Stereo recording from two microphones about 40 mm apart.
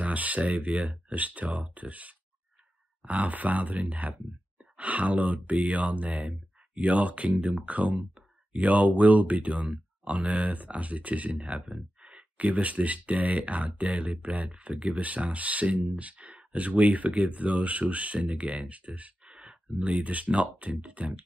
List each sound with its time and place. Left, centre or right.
0.0 s speech: right
19.8 s speech: right